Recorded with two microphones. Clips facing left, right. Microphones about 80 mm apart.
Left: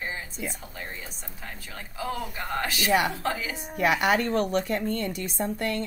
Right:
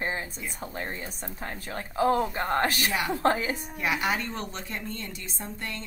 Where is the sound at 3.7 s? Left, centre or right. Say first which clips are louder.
Left 7 dB; left.